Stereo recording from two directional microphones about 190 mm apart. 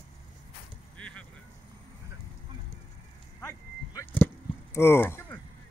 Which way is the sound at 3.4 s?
15° left (ahead or behind).